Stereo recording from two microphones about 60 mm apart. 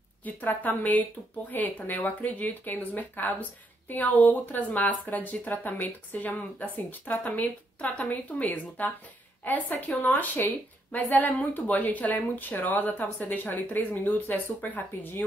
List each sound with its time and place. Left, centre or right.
0.2 s speech: left